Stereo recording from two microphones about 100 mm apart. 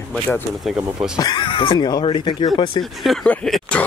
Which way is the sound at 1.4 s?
55° left (ahead or behind).